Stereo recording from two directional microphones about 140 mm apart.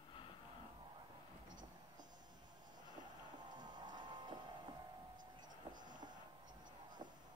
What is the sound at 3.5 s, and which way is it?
Music, 30° right (ahead or behind).